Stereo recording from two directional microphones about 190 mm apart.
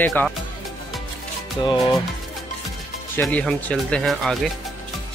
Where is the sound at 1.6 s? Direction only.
25° left (ahead or behind).